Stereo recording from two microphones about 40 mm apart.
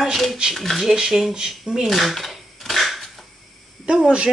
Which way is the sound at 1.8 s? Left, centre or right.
Centre.